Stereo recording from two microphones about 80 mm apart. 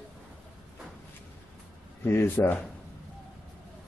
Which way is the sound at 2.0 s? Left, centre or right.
Left.